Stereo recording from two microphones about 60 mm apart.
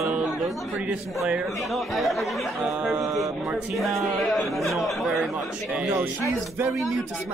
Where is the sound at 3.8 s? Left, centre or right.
Centre.